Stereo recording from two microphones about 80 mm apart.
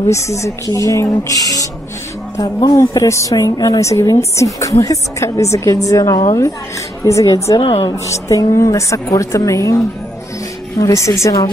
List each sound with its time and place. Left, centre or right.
0.1 s a woman's voice: left
2.3 s speech: left
2.7 s a woman's voice: left
10.8 s a woman's voice: left